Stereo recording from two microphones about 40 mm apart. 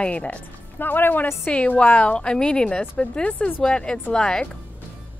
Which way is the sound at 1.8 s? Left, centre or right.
Left.